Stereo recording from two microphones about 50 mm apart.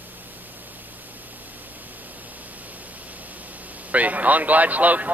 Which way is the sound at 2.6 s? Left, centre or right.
Right.